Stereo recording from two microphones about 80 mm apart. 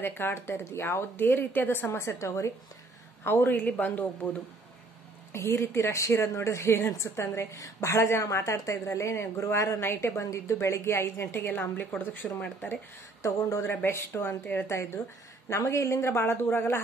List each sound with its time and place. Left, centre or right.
0.0 s a woman's voice: left
3.3 s a man's voice: left
5.3 s a woman's voice: left
13.2 s a woman's voice: left